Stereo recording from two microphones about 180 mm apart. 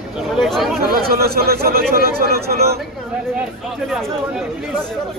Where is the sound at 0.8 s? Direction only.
60° right (ahead or behind).